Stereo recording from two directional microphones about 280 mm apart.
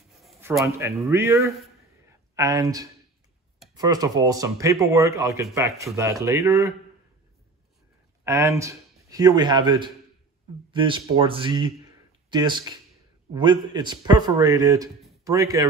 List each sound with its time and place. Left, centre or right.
0.2 s speech: centre
8.2 s speech: centre